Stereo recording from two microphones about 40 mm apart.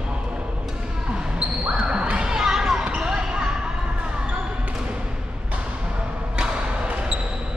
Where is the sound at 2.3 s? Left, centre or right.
Centre.